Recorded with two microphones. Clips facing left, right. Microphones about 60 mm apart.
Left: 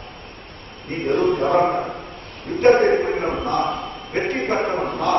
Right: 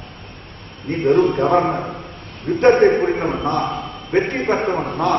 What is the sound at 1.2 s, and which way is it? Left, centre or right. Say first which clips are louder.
A man's voice: right 1 dB; centre.